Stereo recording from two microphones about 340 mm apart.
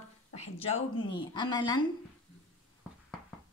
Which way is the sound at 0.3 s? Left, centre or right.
Centre.